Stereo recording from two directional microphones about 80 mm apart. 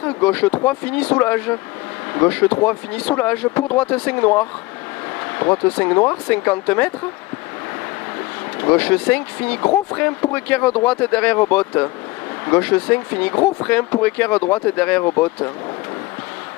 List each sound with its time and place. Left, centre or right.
0.0 s speech: centre
8.6 s speech: centre